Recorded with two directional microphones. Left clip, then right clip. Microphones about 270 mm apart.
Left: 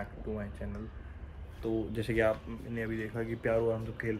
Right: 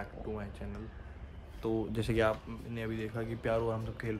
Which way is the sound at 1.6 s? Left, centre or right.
Centre.